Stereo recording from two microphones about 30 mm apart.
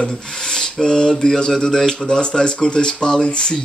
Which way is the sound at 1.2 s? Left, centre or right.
Left.